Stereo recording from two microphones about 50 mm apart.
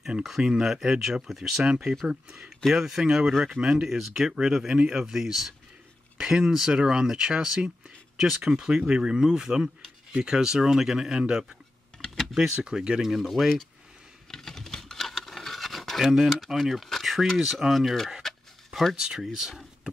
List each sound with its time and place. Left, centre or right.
0.2 s speech: centre
1.6 s speech: centre
12.0 s computer keyboard: centre
12.5 s speech: centre
13.1 s speech: centre
14.3 s scratch: centre
16.0 s speech: centre
18.9 s speech: centre